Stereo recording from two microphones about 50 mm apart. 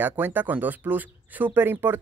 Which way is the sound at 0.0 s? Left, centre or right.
Right.